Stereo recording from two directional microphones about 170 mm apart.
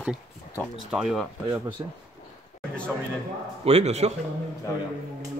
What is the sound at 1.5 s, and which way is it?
Speech, 30° right (ahead or behind).